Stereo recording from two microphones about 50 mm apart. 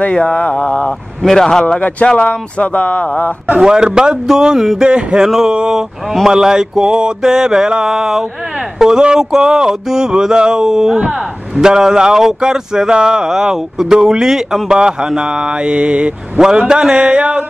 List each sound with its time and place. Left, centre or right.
0.0 s speech: left
1.2 s speech: centre
2.0 s speech: left
3.5 s speech: centre